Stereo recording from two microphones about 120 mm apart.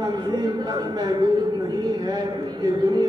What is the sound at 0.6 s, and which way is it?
Speech, 35° right (ahead or behind).